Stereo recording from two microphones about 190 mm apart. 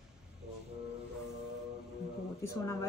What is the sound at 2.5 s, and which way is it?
Speech, 15° left (ahead or behind).